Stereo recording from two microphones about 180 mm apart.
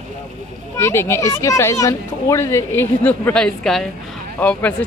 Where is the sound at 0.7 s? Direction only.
15° left (ahead or behind).